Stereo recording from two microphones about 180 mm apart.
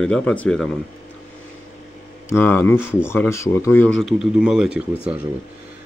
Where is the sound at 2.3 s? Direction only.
10° left (ahead or behind).